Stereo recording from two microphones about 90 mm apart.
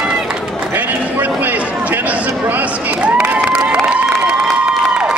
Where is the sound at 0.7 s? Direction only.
20° right (ahead or behind).